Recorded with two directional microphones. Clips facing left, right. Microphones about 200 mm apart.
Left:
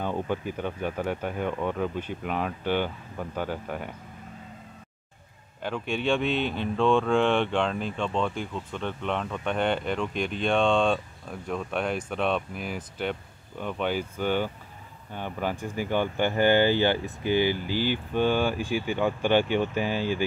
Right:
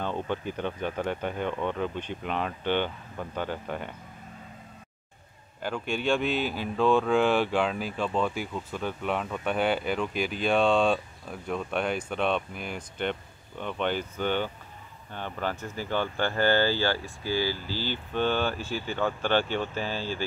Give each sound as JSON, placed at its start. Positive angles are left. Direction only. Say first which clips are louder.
{"t": 0.0, "sound": "speech", "louder": "left 2 dB", "side_deg": 10}
{"t": 5.6, "sound": "speech", "louder": "left 1 dB", "side_deg": 0}